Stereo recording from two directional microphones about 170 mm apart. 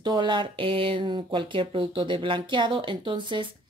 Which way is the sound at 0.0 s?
25° right (ahead or behind).